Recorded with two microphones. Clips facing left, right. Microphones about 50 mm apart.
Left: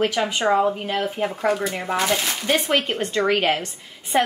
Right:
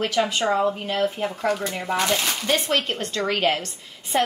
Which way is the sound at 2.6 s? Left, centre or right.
Centre.